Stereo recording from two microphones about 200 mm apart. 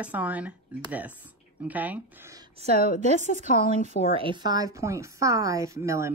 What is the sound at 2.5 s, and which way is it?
A woman's voice, 30° right (ahead or behind).